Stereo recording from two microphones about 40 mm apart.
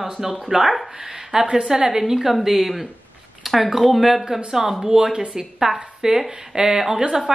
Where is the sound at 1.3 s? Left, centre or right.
Right.